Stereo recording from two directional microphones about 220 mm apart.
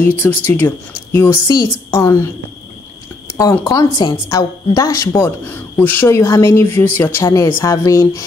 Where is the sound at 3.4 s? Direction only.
15° left (ahead or behind).